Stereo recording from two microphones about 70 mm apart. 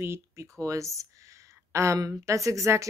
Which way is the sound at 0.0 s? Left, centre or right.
Right.